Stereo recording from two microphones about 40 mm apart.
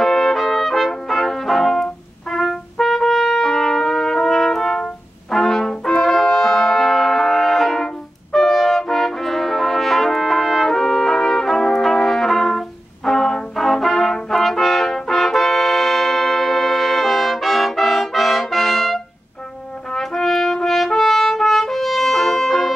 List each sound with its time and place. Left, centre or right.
0.0 s trumpet: centre
7.8 s brass instrument: centre
20.0 s brass instrument: centre